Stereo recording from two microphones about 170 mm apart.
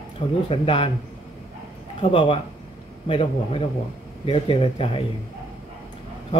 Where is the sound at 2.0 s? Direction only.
30° left (ahead or behind).